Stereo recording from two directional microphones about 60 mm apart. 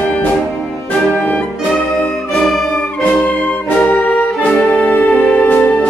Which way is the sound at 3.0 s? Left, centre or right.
Left.